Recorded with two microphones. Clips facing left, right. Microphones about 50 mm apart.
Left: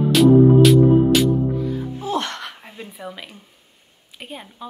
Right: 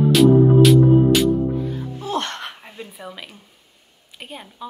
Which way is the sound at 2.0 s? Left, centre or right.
Right.